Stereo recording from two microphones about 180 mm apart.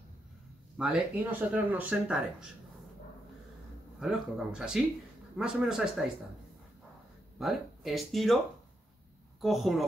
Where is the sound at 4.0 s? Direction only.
5° right (ahead or behind).